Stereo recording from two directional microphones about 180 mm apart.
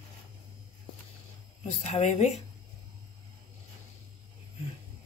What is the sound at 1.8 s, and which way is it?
Speech, 40° left (ahead or behind).